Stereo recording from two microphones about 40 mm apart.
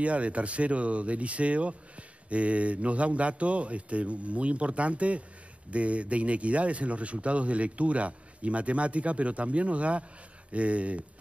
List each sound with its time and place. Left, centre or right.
0.0 s speech: right